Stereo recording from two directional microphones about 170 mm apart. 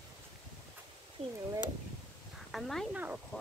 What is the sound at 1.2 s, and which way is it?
Speech, 40° right (ahead or behind).